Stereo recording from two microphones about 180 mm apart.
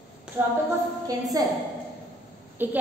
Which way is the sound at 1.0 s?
20° right (ahead or behind).